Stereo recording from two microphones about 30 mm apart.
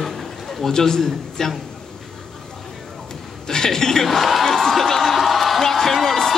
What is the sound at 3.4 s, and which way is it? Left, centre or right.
A man's voice, centre.